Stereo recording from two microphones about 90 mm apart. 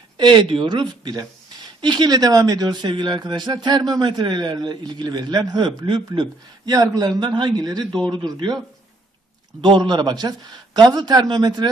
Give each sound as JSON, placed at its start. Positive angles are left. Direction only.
{"t": 0.2, "sound": "speech", "side_deg": -60}
{"t": 6.7, "sound": "speech", "side_deg": -45}
{"t": 9.6, "sound": "speech", "side_deg": -60}